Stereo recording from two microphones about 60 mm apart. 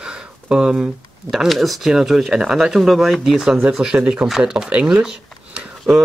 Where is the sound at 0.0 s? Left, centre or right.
Centre.